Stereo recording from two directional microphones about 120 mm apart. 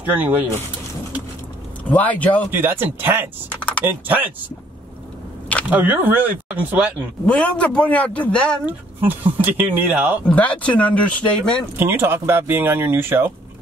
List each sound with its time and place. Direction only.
0.0 s speech: 15° right (ahead or behind)
1.9 s a man's voice: 10° left (ahead or behind)
2.5 s speech: 20° right (ahead or behind)
3.4 s typing: 10° left (ahead or behind)
3.8 s speech: 15° right (ahead or behind)
5.7 s speech: 15° right (ahead or behind)
7.2 s a man's voice: 10° left (ahead or behind)
8.6 s speech: 15° right (ahead or behind)
10.2 s a man's voice: 10° left (ahead or behind)
11.8 s speech: 20° right (ahead or behind)